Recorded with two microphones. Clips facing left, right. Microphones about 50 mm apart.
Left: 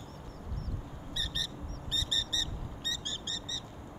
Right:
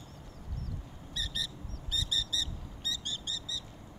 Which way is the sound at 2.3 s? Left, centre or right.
Left.